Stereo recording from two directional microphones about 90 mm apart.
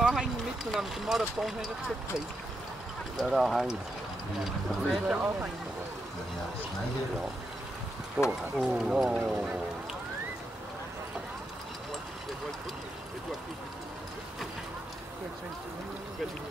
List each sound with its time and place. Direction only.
0.0 s vehicle: 5° right (ahead or behind)
3.2 s speech: 5° right (ahead or behind)
5.1 s speech: 15° right (ahead or behind)
8.2 s speech: 10° right (ahead or behind)